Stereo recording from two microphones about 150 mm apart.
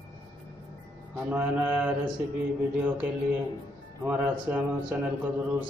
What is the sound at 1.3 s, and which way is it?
Speech, 10° right (ahead or behind).